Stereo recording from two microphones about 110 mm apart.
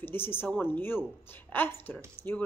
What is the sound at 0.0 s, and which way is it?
Speech, 20° left (ahead or behind).